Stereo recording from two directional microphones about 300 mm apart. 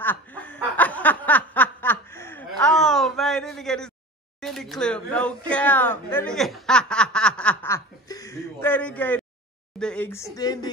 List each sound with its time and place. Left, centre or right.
0.0 s snicker: centre
4.4 s a sound: centre
5.5 s snicker: centre
9.8 s speech: centre